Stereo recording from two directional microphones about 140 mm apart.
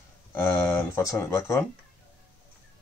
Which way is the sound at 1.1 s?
20° left (ahead or behind).